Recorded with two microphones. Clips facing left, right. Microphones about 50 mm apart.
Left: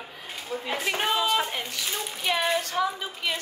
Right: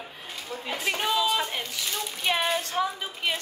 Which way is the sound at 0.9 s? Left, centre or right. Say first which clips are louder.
Even; left.